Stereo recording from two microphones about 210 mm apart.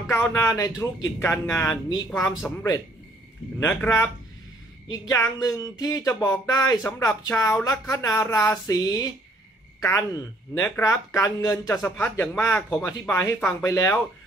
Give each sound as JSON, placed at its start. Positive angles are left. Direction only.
{"t": 0.1, "sound": "speech", "side_deg": 15}
{"t": 2.0, "sound": "speech", "side_deg": 5}